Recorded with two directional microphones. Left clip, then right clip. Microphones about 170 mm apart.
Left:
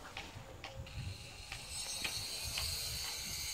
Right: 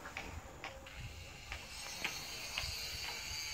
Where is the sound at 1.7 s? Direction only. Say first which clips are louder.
Left 2 dB; 20° left (ahead or behind); by 3.5 s 35° left (ahead or behind).